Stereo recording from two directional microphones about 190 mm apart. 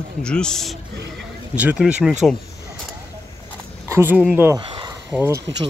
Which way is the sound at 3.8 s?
15° right (ahead or behind).